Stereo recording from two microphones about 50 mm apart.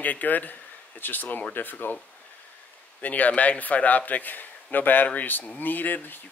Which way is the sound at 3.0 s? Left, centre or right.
Left.